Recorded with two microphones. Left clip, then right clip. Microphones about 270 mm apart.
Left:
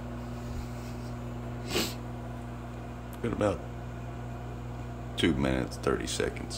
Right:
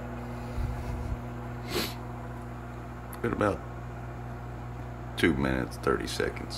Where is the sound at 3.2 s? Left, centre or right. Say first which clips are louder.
Right 1 dB; centre.